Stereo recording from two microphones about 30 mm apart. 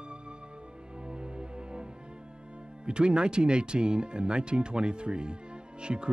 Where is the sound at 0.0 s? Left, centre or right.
Right.